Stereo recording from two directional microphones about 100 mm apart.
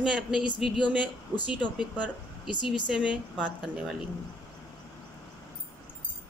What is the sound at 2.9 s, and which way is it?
Speech, 10° right (ahead or behind).